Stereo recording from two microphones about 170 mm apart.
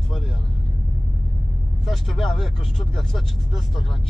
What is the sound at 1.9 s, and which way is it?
Speech, centre (ahead or behind).